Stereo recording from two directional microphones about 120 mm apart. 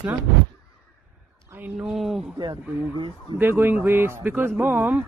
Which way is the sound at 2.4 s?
40° right (ahead or behind).